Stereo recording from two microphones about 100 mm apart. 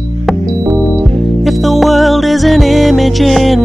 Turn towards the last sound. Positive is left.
turn(degrees=0)  # may be behind; listen again after turning